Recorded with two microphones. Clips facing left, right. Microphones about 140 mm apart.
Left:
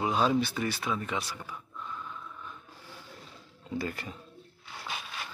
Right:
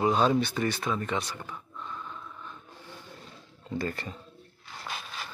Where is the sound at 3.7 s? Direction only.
5° left (ahead or behind).